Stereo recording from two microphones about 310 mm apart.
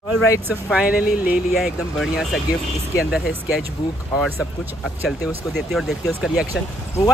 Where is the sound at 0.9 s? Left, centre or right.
Left.